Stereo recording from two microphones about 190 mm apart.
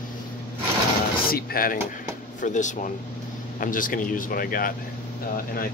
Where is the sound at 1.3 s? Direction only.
50° left (ahead or behind).